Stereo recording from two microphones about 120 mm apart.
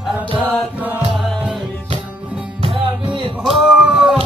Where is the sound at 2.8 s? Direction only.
45° right (ahead or behind).